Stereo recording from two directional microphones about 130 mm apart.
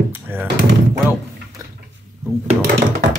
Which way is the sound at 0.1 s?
15° right (ahead or behind).